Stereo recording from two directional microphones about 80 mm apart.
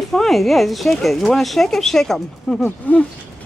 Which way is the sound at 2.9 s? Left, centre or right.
Left.